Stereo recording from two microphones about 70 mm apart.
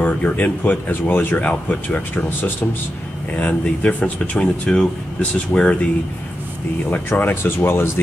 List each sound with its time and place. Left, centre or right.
0.0 s speech: left
6.9 s speech: left